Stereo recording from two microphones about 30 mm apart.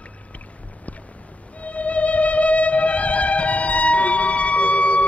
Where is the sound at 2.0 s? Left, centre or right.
Left.